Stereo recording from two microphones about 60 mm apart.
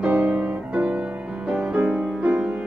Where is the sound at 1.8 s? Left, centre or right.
Right.